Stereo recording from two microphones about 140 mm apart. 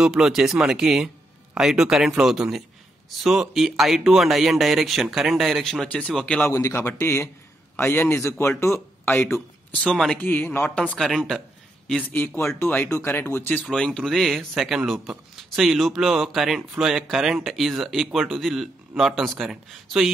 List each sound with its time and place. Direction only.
0.0 s speech: 5° right (ahead or behind)
6.5 s speech: 20° left (ahead or behind)
9.8 s speech: 5° left (ahead or behind)
10.2 s speech: 15° left (ahead or behind); by 11.4 s centre (ahead or behind)
11.9 s speech: 10° left (ahead or behind)
13.7 s speech: 5° left (ahead or behind)